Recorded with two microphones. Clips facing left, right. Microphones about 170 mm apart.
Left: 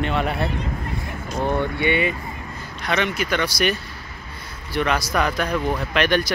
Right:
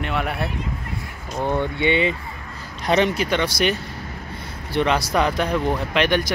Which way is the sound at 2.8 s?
35° right (ahead or behind).